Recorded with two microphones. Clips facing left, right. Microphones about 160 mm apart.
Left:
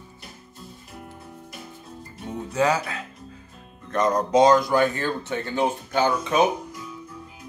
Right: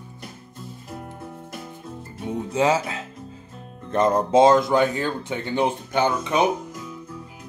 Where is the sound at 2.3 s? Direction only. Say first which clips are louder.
Right 2 dB; 20° right (ahead or behind).